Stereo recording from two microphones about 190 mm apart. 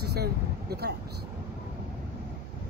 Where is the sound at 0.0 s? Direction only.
60° right (ahead or behind).